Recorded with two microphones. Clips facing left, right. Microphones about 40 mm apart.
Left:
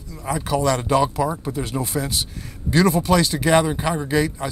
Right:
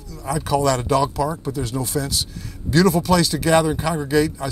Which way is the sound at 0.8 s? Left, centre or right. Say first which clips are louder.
Even; left.